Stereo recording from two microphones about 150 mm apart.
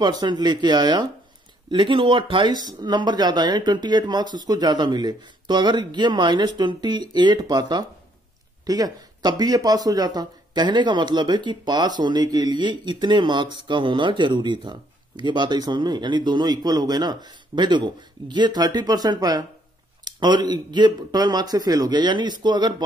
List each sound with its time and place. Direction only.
0.0 s speech: 30° right (ahead or behind)